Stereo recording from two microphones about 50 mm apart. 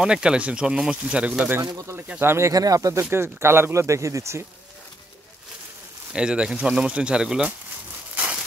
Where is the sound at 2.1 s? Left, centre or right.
Right.